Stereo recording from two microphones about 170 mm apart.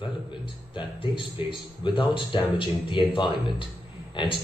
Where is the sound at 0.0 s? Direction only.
30° left (ahead or behind).